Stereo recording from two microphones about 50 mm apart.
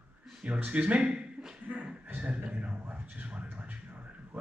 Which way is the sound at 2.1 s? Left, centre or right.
Right.